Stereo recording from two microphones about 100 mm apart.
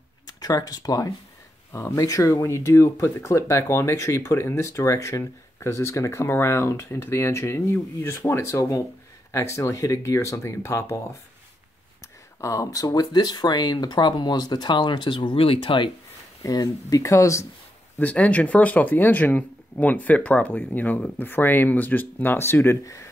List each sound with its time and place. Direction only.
0.3 s speech: 35° left (ahead or behind)
1.7 s speech: 25° left (ahead or behind)
12.4 s speech: 35° left (ahead or behind); by 15.9 s 60° left (ahead or behind)
16.4 s speech: 35° left (ahead or behind)
17.9 s speech: 15° left (ahead or behind)